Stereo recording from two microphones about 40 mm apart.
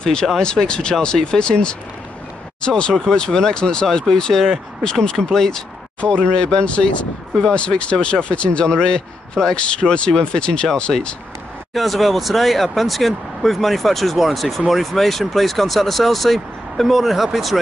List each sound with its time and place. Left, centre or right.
0.0 s speech: centre
5.9 s speech: left
11.7 s speech: centre